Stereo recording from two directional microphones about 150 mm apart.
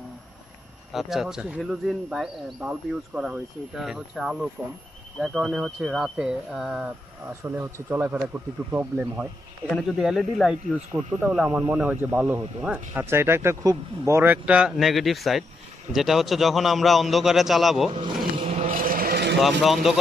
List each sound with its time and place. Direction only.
0.9 s speech: centre (ahead or behind)
17.9 s vehicle: 45° right (ahead or behind)
18.7 s vehicle: 70° right (ahead or behind)
19.4 s speech: centre (ahead or behind)